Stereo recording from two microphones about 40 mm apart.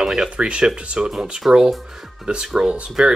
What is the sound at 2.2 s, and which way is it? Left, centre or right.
Speech, right.